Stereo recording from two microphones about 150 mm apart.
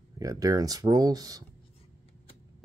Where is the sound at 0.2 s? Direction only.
25° right (ahead or behind).